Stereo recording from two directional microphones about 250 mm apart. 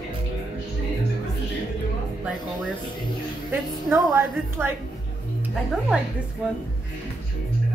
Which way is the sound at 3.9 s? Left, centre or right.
Centre.